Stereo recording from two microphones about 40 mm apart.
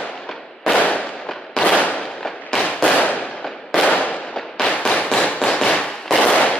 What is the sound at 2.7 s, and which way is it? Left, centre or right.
Firecracker, left.